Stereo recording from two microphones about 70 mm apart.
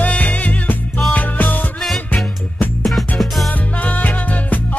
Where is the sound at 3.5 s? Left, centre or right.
Left.